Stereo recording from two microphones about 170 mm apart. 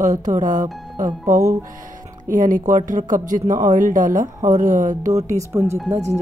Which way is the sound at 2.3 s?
50° right (ahead or behind).